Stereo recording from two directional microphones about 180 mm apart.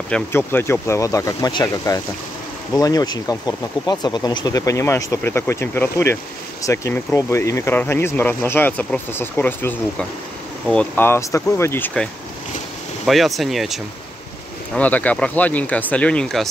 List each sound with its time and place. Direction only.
0.1 s speech: 10° left (ahead or behind)
14.8 s speech: 10° left (ahead or behind)